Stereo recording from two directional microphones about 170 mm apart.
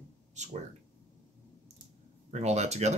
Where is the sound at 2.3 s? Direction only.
40° right (ahead or behind).